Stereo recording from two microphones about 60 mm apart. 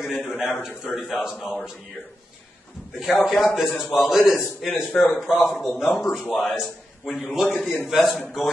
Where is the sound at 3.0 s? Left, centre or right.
Centre.